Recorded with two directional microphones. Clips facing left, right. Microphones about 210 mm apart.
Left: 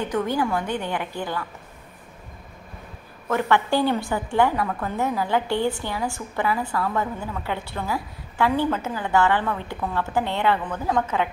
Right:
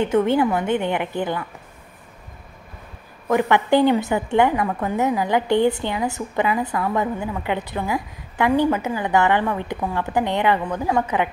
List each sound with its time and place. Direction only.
0.0 s a woman's voice: 25° right (ahead or behind)
3.3 s a woman's voice: 15° right (ahead or behind)